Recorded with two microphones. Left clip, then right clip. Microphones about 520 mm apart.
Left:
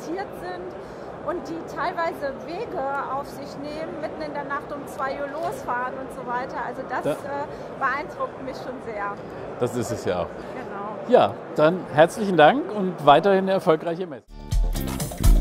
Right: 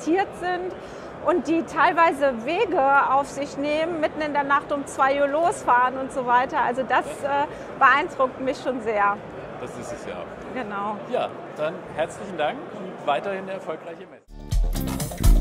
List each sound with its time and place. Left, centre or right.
0.0 s a woman's voice: right
9.8 s a man's voice: left
13.0 s a man's voice: left
14.8 s music: centre